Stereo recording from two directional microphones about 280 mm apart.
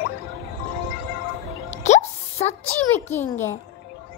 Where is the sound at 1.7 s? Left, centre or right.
Left.